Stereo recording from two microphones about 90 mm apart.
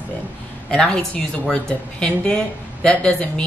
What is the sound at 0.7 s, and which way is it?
Speech, 10° left (ahead or behind).